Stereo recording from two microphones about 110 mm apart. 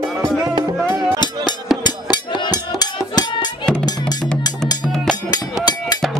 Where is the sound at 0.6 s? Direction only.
40° right (ahead or behind).